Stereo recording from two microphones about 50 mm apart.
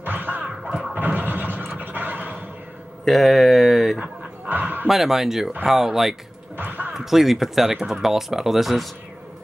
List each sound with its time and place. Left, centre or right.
0.0 s music: right
0.7 s a sound: centre
0.9 s scratching: right
1.8 s a sound: right
3.1 s a sound: centre
4.5 s dog: right
4.8 s speech: centre
6.5 s basketball bounce: right
6.9 s speech: centre